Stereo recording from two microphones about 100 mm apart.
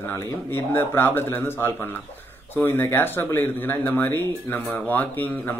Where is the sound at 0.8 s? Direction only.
20° left (ahead or behind).